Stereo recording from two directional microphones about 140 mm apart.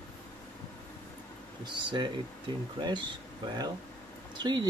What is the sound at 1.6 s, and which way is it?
Speech, 35° right (ahead or behind).